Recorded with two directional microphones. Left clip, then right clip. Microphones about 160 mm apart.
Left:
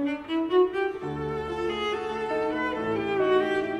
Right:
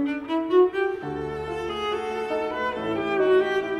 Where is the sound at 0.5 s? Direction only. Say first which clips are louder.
Right 3 dB; 15° right (ahead or behind).